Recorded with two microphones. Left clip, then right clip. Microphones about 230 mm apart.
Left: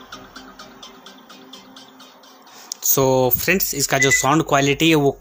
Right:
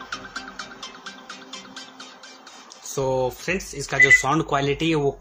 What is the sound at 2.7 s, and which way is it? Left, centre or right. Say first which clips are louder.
Speech: left 7 dB; left.